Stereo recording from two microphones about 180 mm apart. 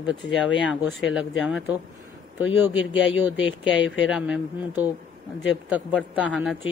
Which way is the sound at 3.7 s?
90° left.